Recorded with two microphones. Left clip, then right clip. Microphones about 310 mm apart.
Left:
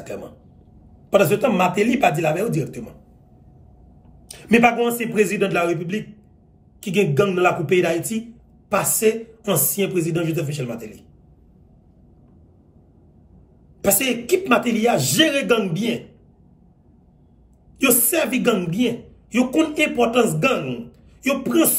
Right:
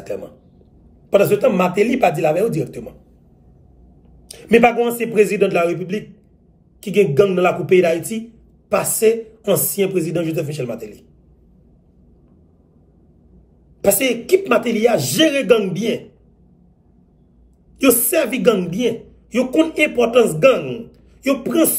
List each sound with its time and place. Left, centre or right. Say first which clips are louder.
1.1 s speech: right 3 dB; centre
4.3 s speech: right 3 dB; centre
13.7 s speech: right 4 dB; centre
17.7 s speech: right 4 dB; centre